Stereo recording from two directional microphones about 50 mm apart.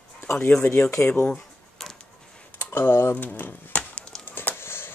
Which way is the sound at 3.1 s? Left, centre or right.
Left.